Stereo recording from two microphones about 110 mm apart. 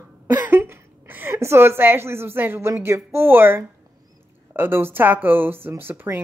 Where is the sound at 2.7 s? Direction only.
25° right (ahead or behind).